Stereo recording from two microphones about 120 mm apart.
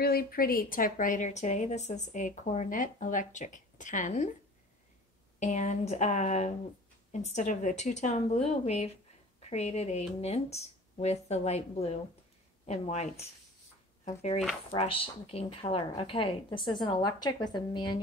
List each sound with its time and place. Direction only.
0.9 s a woman's voice: 90° left
5.4 s a woman's voice: 75° left (ahead or behind)
14.7 s a woman's voice: 50° left (ahead or behind)